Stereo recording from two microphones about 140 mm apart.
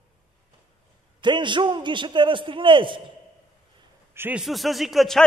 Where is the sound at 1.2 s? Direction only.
35° right (ahead or behind).